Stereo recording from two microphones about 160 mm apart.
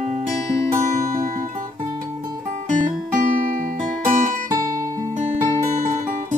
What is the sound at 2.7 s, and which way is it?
Music, 50° right (ahead or behind).